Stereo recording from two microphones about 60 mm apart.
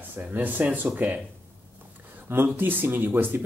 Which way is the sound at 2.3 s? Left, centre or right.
Right.